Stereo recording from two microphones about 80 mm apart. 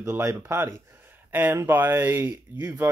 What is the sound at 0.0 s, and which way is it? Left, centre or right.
Speech, right.